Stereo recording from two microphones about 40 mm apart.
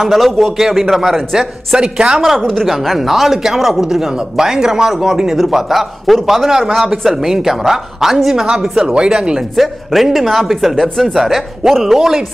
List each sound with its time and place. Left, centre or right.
0.0 s a man's voice: centre
1.8 s speech: right
2.4 s a woman's voice: centre
8.7 s speech: centre
9.6 s a man's voice: centre